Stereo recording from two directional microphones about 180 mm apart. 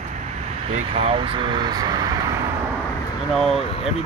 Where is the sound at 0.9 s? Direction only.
30° right (ahead or behind).